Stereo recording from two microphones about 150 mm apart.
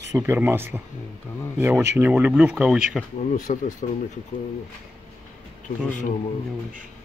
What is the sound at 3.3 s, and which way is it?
Speech, 60° left (ahead or behind).